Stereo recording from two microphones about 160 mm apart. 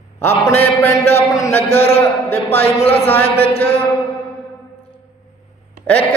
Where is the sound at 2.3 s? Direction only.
10° left (ahead or behind).